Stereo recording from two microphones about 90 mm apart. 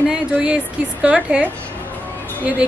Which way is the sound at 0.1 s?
10° right (ahead or behind).